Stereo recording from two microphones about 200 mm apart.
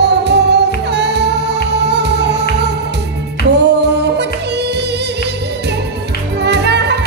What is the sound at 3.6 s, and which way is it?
Music, 55° right (ahead or behind).